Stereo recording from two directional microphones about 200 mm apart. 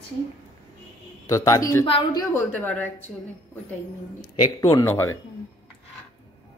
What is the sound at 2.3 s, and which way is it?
Speech, 10° left (ahead or behind).